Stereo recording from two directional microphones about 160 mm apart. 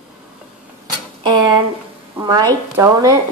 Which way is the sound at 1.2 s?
30° right (ahead or behind).